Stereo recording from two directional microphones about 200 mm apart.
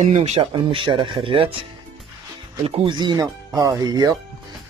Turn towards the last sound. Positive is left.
turn(degrees=-20)  # may be behind; listen again after turning